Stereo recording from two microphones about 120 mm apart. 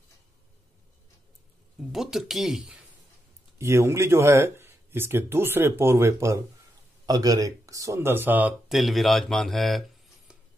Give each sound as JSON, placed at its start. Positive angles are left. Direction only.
{"t": 1.8, "sound": "speech", "side_deg": -5}
{"t": 3.5, "sound": "speech", "side_deg": -25}
{"t": 8.6, "sound": "speech", "side_deg": 0}